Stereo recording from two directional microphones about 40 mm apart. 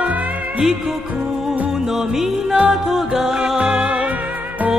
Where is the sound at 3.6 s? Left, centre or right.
Right.